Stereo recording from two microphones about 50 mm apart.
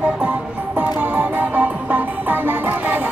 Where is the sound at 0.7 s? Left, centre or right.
Right.